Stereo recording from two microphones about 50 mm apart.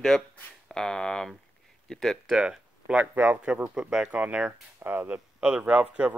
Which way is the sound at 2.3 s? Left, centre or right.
Right.